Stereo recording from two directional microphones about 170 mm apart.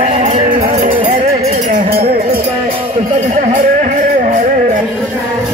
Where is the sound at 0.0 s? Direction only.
45° right (ahead or behind).